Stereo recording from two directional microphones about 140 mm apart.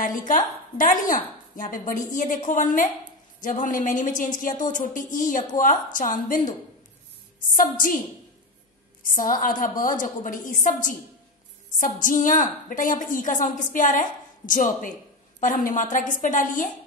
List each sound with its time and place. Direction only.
0.0 s a woman's voice: 70° left (ahead or behind)
7.5 s a woman's voice: 70° left (ahead or behind)
9.0 s a woman's voice: 75° left (ahead or behind)